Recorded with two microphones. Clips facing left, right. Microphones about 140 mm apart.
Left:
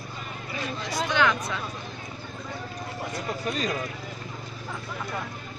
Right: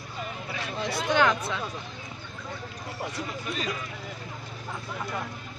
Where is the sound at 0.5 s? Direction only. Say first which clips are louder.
Left 1 dB; 55° right (ahead or behind).